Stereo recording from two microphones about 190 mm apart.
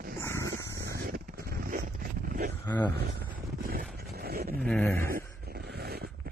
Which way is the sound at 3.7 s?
50° right (ahead or behind).